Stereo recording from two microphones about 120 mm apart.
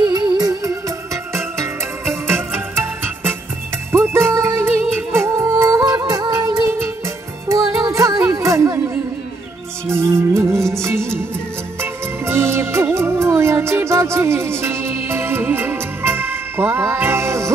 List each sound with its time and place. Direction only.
0.0 s music: 35° right (ahead or behind)